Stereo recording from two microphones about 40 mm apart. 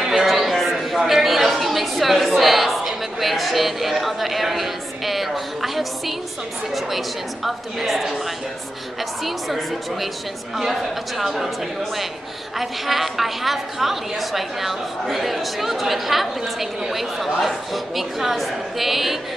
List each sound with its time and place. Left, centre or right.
0.0 s a sound: centre
0.9 s a woman's voice: centre
9.2 s a woman's voice: centre
12.5 s a woman's voice: centre